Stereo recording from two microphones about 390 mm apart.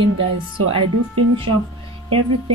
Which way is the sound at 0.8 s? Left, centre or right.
Right.